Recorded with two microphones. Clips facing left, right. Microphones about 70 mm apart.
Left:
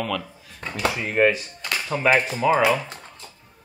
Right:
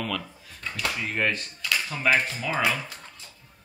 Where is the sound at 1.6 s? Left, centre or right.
Left.